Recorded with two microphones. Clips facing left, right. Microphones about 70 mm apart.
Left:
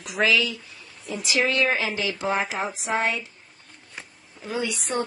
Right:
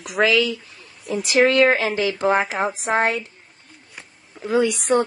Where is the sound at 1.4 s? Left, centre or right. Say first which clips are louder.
Right 7 dB; right.